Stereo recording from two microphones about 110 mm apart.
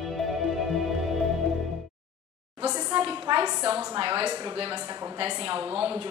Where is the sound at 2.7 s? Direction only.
35° right (ahead or behind).